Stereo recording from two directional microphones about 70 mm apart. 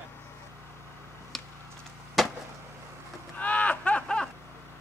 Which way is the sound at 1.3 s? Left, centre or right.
Centre.